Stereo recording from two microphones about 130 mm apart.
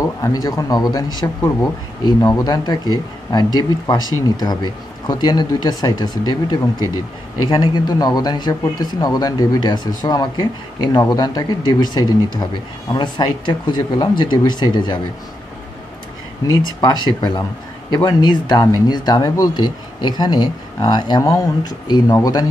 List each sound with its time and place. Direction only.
0.0 s speech: 25° left (ahead or behind)
1.2 s speech: 20° left (ahead or behind)
17.0 s speech: 35° left (ahead or behind)